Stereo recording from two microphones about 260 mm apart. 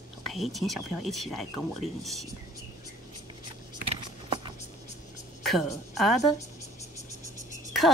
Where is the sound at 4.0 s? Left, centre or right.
Centre.